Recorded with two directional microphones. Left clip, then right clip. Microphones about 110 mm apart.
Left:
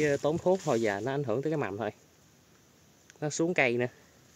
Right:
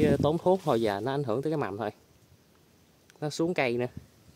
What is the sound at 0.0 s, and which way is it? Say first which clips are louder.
Speech: right 2 dB; 25° right (ahead or behind).